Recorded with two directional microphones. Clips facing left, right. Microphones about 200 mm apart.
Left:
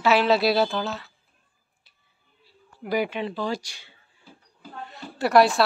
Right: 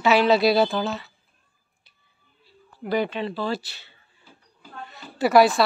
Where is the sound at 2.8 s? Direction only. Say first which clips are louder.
Right 1 dB; 10° left (ahead or behind).